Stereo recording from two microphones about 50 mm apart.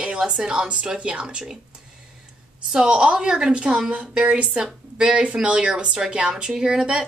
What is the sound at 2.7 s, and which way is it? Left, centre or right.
A woman's voice, centre.